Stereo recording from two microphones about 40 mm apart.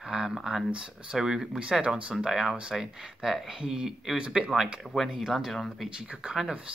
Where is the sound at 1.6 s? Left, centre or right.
Right.